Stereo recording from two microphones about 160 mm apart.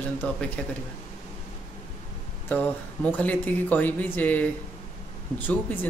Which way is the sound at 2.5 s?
10° left (ahead or behind).